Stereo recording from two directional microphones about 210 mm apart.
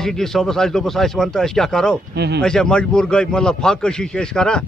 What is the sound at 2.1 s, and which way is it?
Speech, 55° right (ahead or behind).